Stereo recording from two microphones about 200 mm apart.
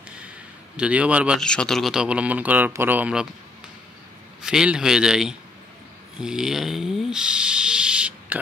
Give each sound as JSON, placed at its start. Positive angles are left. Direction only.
{"t": 0.7, "sound": "speech", "side_deg": -5}
{"t": 4.4, "sound": "speech", "side_deg": -5}
{"t": 6.1, "sound": "hiss", "side_deg": -5}